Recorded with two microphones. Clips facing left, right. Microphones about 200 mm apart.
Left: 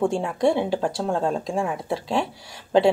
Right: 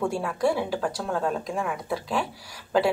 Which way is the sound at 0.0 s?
25° left (ahead or behind).